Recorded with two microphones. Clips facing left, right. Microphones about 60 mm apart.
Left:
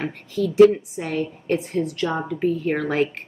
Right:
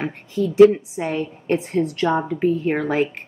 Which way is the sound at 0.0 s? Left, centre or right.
Right.